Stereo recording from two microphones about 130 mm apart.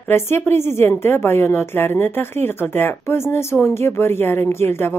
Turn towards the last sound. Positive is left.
turn(degrees=20)  # may be behind; listen again after turning